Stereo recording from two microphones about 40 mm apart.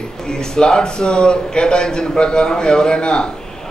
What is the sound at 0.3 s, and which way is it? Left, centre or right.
A man's voice, left.